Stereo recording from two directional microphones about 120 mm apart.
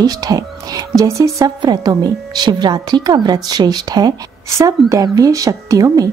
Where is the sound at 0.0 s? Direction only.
35° right (ahead or behind).